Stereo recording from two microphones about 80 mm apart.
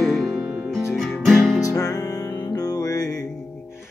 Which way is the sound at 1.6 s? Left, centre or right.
Left.